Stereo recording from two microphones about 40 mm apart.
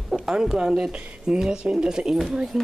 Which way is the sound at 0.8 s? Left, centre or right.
Right.